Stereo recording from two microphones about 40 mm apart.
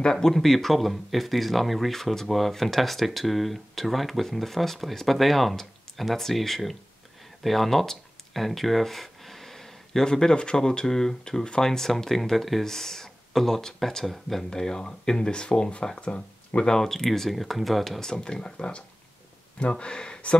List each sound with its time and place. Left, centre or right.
0.0 s speech: centre
0.3 s speech: centre
7.4 s a sound: centre
10.3 s speech: left; by 14.4 s centre
14.5 s speech: centre
16.6 s speech: centre
18.1 s speech: centre